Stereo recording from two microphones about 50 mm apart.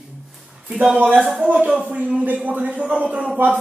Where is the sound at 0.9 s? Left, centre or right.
Right.